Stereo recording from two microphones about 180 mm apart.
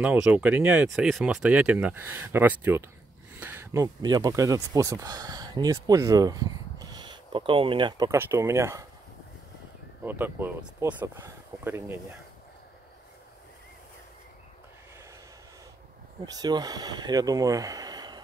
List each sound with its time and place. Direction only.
0.0 s speech: 5° right (ahead or behind); by 8.1 s 25° right (ahead or behind)
8.1 s speech: 15° right (ahead or behind)
10.0 s speech: 10° right (ahead or behind)
16.3 s speech: 20° right (ahead or behind)